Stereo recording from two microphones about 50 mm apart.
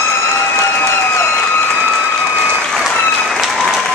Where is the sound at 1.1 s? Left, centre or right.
Left.